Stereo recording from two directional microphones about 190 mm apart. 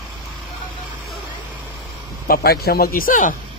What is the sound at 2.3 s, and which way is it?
Speech, 55° left (ahead or behind).